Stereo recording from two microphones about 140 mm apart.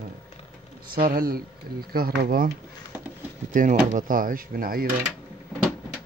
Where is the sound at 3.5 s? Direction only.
70° right (ahead or behind); by 4.9 s 90° right.